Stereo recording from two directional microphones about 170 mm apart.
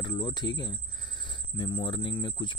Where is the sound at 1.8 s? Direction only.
30° left (ahead or behind).